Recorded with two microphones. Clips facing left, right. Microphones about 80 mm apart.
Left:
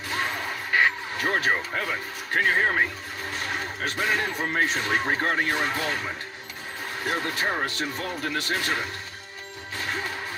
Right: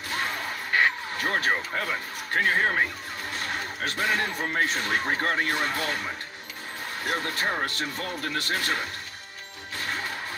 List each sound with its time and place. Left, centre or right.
0.1 s music: left
2.3 s speech: left
7.1 s speech: left